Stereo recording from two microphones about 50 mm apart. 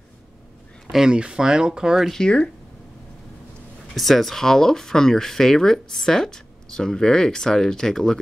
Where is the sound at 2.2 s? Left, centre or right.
Centre.